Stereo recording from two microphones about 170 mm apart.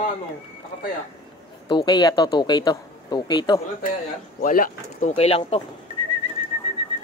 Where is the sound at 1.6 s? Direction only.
25° left (ahead or behind).